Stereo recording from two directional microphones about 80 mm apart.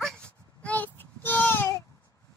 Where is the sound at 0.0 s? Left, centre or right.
Centre; by 1.7 s left.